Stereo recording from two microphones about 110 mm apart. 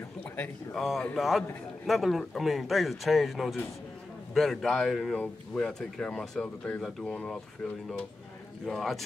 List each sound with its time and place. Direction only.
0.7 s speech: centre (ahead or behind)
8.6 s speech: centre (ahead or behind)